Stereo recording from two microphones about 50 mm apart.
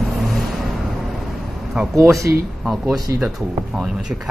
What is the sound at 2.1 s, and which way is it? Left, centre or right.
Speech, right.